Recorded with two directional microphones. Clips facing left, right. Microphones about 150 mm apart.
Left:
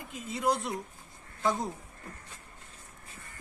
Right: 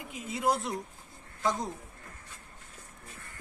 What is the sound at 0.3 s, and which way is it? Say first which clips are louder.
A woman's voice: even; 5° right (ahead or behind).